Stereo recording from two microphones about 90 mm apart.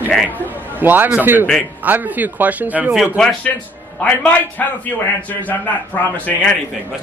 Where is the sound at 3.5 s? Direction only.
20° left (ahead or behind).